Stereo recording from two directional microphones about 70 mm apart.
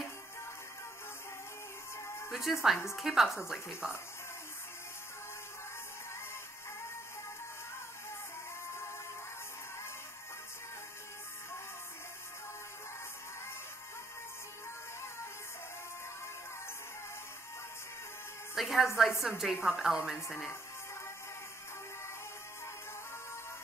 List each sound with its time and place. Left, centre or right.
2.2 s speech: centre
18.5 s a sound: centre
18.9 s a woman's voice: centre